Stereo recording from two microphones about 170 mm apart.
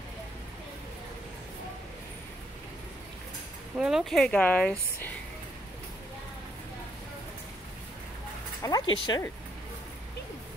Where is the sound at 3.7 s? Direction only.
5° right (ahead or behind).